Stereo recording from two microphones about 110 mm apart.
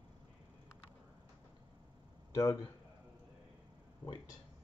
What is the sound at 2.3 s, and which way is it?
Speech, 35° left (ahead or behind).